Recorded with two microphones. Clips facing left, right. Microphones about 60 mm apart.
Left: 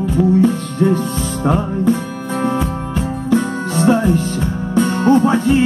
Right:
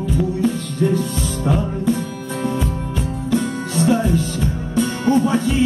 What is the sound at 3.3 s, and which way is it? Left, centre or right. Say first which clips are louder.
Music: left 4 dB; left.